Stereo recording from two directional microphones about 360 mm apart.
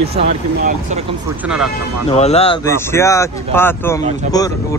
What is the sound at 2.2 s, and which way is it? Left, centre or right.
Speech, centre.